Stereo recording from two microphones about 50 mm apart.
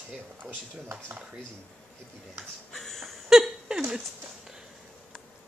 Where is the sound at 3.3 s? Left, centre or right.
Centre.